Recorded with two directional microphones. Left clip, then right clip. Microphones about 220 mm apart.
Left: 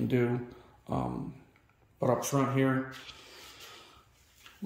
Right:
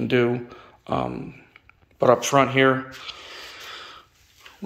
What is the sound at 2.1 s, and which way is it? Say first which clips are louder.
A man's voice: right 11 dB; 10° right (ahead or behind).